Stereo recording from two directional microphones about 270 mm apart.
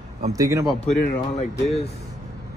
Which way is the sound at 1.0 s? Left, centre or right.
Left.